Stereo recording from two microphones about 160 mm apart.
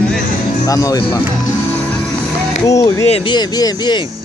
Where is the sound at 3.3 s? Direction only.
25° left (ahead or behind).